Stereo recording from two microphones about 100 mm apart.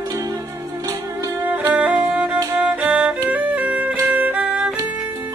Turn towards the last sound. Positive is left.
turn(degrees=-15)  # may be behind; listen again after turning